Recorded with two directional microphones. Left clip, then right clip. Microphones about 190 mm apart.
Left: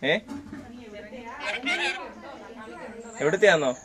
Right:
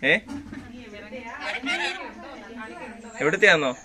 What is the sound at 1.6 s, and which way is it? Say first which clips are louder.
Speech: even; 20° left (ahead or behind).